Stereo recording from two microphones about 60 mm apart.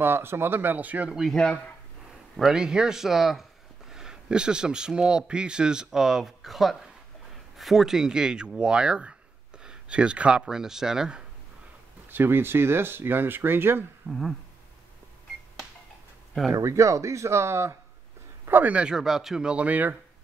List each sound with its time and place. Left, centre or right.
0.0 s speech: right
1.3 s speech: centre
2.5 s speech: centre
10.4 s speech: centre
12.1 s speech: right
14.0 s speech: centre
16.5 s speech: right
18.4 s speech: right
18.9 s speech: centre; by 20.0 s right